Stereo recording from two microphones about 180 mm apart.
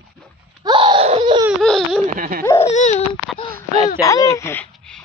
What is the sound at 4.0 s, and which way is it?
Speech, 20° left (ahead or behind).